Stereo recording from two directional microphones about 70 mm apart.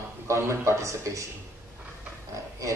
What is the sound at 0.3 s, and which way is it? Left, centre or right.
Speech, right.